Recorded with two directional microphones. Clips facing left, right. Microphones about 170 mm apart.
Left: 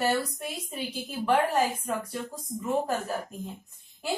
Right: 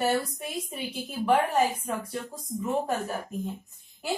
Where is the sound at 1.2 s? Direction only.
Centre (ahead or behind).